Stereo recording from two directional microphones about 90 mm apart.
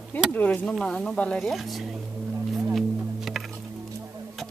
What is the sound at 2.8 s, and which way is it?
Music, centre (ahead or behind).